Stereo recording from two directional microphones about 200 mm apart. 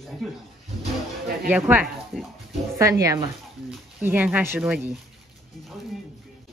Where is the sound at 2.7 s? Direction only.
15° right (ahead or behind).